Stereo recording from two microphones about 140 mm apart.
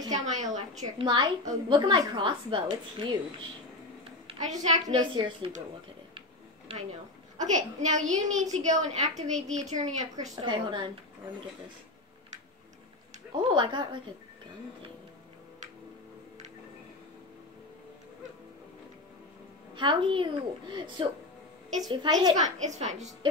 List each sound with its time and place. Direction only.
0.1 s a child's voice: 60° right (ahead or behind)
0.9 s a woman's voice: 35° right (ahead or behind)
4.4 s a child's voice: 60° right (ahead or behind)
4.8 s a woman's voice: 35° right (ahead or behind)
7.3 s a child's voice: 60° right (ahead or behind)
10.3 s a woman's voice: 35° right (ahead or behind)
13.3 s a woman's voice: 35° right (ahead or behind)
19.7 s a woman's voice: 35° right (ahead or behind)
22.4 s a child's voice: 55° right (ahead or behind)